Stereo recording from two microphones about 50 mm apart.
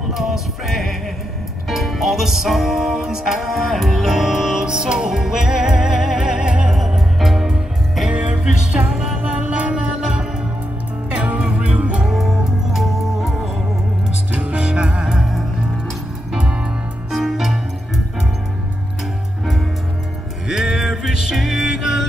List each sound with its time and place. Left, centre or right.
0.1 s music: centre
6.7 s music: centre
8.1 s music: right
8.9 s music: centre
9.3 s music: right
12.0 s music: centre
14.3 s music: right
15.1 s music: centre
17.1 s music: centre
20.4 s music: centre